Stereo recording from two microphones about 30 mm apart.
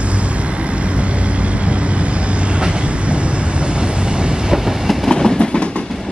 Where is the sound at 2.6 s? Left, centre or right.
Right.